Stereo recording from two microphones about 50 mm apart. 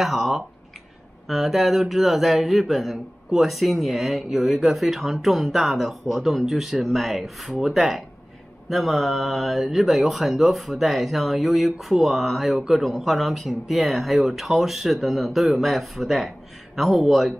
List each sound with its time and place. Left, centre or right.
0.0 s speech: centre